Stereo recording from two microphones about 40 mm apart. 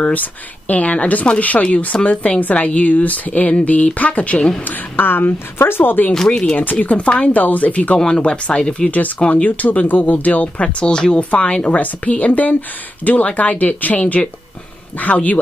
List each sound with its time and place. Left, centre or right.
0.0 s speech: left
4.6 s speech: left
6.2 s speech: centre
6.6 s speech: left
7.3 s speech: left
8.3 s speech: left
9.2 s speech: left